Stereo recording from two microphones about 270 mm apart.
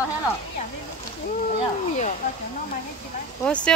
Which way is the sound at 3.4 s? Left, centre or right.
Centre.